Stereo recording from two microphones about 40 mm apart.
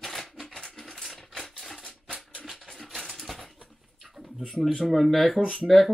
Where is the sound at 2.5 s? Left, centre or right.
Centre.